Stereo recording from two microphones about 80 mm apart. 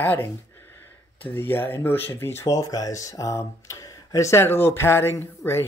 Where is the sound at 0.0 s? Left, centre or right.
Left.